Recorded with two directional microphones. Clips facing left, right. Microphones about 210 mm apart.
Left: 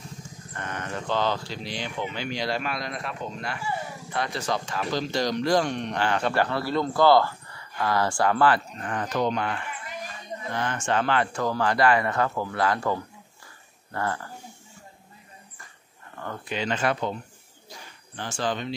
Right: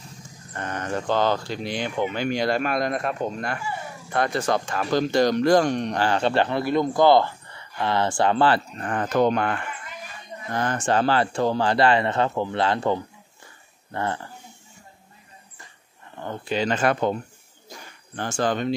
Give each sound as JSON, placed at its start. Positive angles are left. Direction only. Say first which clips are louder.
{"t": 0.5, "sound": "speech", "louder": "right 5 dB", "side_deg": -35}
{"t": 8.8, "sound": "speech", "louder": "right 6 dB", "side_deg": -50}
{"t": 10.5, "sound": "speech", "louder": "right 4 dB", "side_deg": -40}
{"t": 16.2, "sound": "speech", "louder": "right 5 dB", "side_deg": -30}
{"t": 17.6, "sound": "a sound", "louder": "right 3 dB", "side_deg": -50}